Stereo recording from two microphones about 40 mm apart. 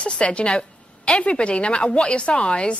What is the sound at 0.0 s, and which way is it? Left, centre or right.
A woman's voice, left.